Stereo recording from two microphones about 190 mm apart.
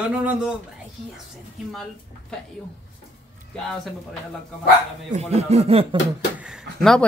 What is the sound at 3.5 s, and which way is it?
Speech, centre (ahead or behind).